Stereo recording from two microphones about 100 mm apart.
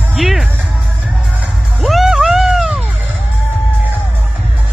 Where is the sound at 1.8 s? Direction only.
Centre (ahead or behind).